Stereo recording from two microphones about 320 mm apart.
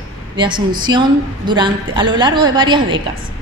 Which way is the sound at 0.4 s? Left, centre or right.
Centre.